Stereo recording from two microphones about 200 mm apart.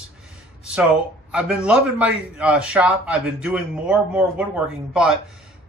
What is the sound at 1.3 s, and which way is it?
Speech, 5° right (ahead or behind).